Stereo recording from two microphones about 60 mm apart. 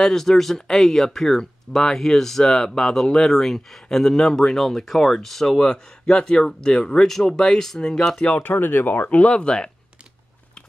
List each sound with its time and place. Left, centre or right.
0.0 s speech: centre
5.6 s speech: centre
8.3 s speech: left; by 9.7 s centre